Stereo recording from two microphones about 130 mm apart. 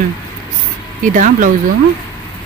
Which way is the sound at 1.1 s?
85° right.